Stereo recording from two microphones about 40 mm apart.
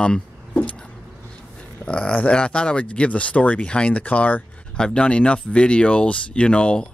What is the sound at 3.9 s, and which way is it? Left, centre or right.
Speech, left.